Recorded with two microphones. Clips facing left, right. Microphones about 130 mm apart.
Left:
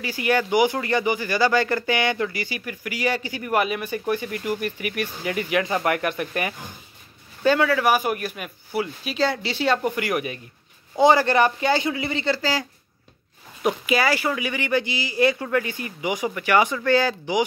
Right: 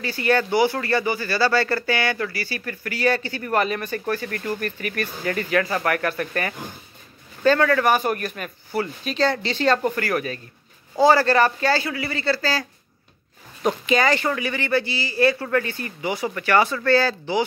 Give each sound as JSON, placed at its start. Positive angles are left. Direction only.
{"t": 0.0, "sound": "speech", "side_deg": 15}